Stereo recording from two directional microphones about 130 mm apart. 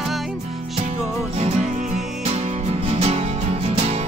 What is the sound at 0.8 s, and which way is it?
Music, 55° right (ahead or behind).